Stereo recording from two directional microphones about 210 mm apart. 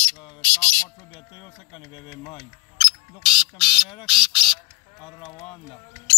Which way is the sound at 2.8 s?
5° right (ahead or behind).